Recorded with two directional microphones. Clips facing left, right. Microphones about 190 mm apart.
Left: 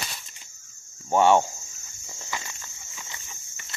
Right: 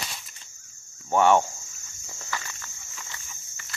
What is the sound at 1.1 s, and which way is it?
Speech, 20° left (ahead or behind).